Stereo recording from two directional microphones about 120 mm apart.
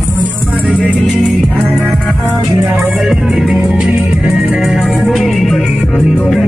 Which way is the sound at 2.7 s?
15° right (ahead or behind).